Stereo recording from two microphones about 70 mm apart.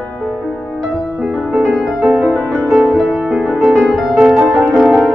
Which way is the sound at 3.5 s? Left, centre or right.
Centre.